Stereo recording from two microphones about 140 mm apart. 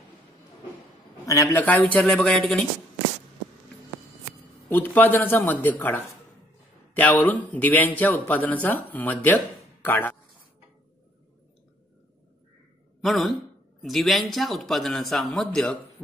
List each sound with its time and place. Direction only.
1.2 s a man's voice: 25° left (ahead or behind)
1.6 s a man's voice: 10° left (ahead or behind)
4.6 s a man's voice: 15° left (ahead or behind)
13.0 s a man's voice: centre (ahead or behind)